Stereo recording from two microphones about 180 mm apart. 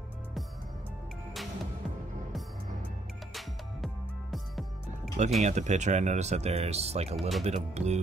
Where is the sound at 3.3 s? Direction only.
Centre (ahead or behind).